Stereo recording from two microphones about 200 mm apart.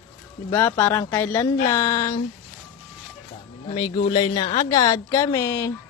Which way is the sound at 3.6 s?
25° left (ahead or behind).